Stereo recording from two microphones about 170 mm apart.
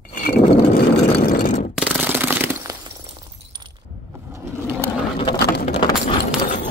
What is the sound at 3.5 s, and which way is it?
Keys jangling, 25° right (ahead or behind).